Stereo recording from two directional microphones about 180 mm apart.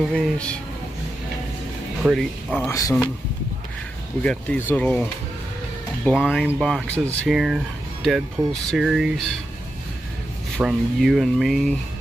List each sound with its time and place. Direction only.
0.1 s speech: 5° left (ahead or behind)
2.0 s speech: 5° right (ahead or behind)
2.6 s speech: 15° left (ahead or behind)
4.2 s speech: 5° left (ahead or behind)
6.0 s speech: centre (ahead or behind)
10.6 s speech: centre (ahead or behind)